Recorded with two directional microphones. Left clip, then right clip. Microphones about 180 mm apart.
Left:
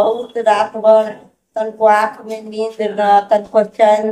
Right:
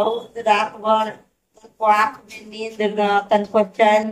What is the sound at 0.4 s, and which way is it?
Speech, 20° left (ahead or behind).